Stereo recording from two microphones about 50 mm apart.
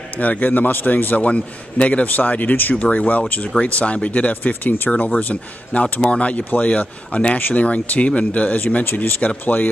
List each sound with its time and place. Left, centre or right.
0.2 s a man's voice: left